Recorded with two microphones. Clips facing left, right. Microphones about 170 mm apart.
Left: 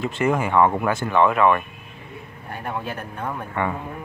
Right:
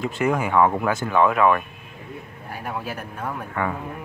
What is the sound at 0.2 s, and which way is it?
Speech, centre (ahead or behind).